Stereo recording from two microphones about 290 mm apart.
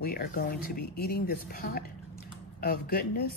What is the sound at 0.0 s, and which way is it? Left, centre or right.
Speech, left.